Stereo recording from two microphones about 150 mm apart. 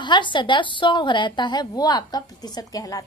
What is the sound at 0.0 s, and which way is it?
A woman's voice, 30° left (ahead or behind).